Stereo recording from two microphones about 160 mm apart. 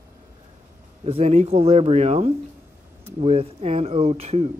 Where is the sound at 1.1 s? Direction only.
40° right (ahead or behind).